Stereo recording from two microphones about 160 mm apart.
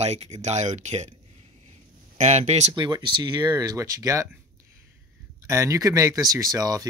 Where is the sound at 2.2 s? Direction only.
45° right (ahead or behind).